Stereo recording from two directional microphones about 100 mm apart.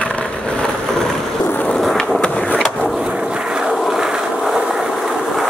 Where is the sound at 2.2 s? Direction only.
10° left (ahead or behind).